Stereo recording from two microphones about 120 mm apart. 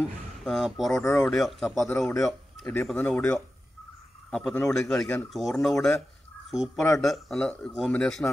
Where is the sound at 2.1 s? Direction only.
25° left (ahead or behind).